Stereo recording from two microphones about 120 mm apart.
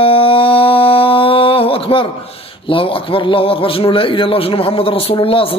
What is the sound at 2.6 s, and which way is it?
A man's voice, 50° left (ahead or behind).